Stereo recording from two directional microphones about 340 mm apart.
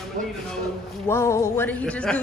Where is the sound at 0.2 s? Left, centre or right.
Right.